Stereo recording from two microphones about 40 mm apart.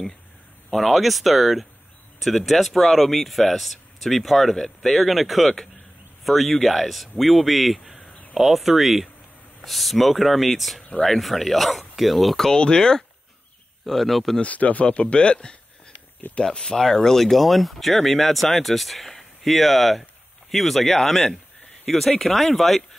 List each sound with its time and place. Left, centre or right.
0.7 s speech: centre
8.1 s a sound: left
8.4 s speech: centre
12.5 s speech: left
13.8 s speech: centre
14.4 s speech: left
14.9 s speech: left
16.4 s speech: centre